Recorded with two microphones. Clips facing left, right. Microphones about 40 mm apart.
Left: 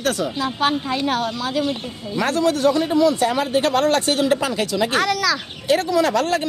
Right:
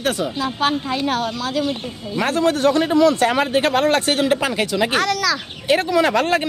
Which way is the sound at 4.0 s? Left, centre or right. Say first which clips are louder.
Right 1 dB; right.